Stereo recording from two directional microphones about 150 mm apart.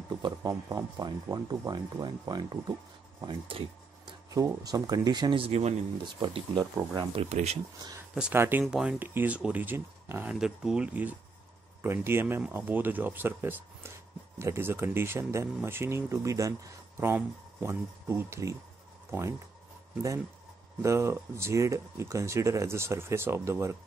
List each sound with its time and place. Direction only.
0.2 s speech: 25° right (ahead or behind)
4.3 s speech: 25° right (ahead or behind); by 5.8 s 45° right (ahead or behind)
6.1 s speech: 30° right (ahead or behind)
7.2 s speech: 45° right (ahead or behind)
8.1 s speech: 5° right (ahead or behind)
10.4 s speech: 5° right (ahead or behind); by 18.6 s 20° right (ahead or behind)
20.8 s speech: 20° right (ahead or behind)